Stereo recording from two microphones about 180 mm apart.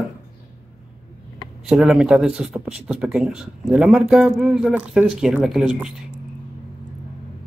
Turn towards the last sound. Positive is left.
turn(degrees=-5)  # may be behind; listen again after turning